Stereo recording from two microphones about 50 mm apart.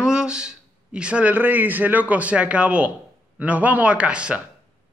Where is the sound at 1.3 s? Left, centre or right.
Right.